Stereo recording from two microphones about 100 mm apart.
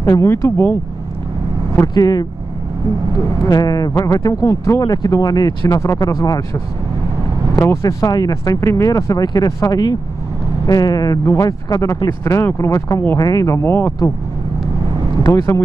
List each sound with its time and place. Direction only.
0.0 s speech: 40° left (ahead or behind)
0.3 s speech: 30° left (ahead or behind)
2.0 s speech: 40° left (ahead or behind)
3.4 s speech: 40° left (ahead or behind)
7.6 s speech: 30° left (ahead or behind)
15.2 s speech: 30° left (ahead or behind)